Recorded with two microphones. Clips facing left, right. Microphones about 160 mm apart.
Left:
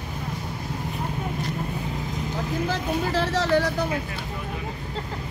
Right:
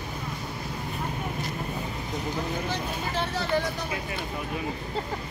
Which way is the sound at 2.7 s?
90° left.